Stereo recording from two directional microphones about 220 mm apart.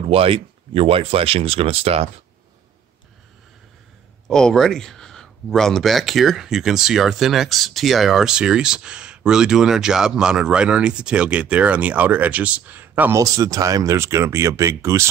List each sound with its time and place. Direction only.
0.1 s speech: 25° right (ahead or behind)
4.3 s speech: 5° left (ahead or behind); by 15.0 s 10° right (ahead or behind)